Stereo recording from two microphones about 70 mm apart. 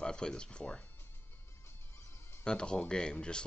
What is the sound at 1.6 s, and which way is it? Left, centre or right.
Music, left.